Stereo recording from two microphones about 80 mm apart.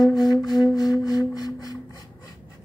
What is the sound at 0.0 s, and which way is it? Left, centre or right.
Music, left.